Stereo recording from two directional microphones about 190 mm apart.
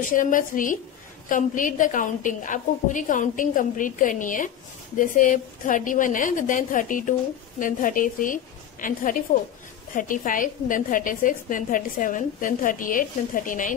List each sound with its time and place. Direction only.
0.1 s a woman's voice: 45° left (ahead or behind)